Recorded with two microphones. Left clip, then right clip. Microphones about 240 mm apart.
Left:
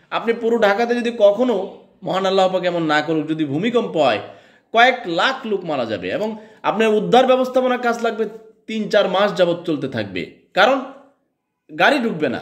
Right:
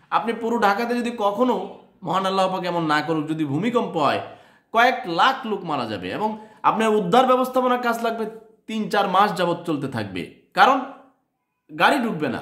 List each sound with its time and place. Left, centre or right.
0.1 s a man's voice: centre
11.8 s a man's voice: centre